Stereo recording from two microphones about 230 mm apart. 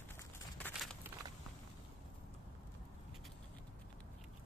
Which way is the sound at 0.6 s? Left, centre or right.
Centre.